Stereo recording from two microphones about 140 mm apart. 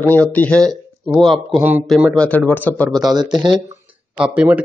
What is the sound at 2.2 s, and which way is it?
Speech, 10° left (ahead or behind).